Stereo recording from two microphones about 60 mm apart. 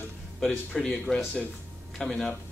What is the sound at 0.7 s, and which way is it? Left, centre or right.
A man's voice, centre.